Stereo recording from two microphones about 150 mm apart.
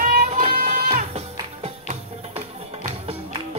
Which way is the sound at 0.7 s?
45° right (ahead or behind).